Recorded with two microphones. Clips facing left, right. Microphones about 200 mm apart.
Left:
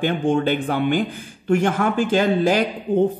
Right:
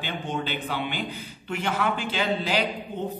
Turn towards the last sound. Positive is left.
turn(degrees=50)  # may be behind; listen again after turning